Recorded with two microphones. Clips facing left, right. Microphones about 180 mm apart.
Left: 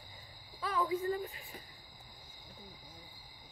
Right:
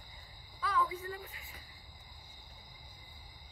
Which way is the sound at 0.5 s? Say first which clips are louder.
Left 1 dB; 25° left (ahead or behind).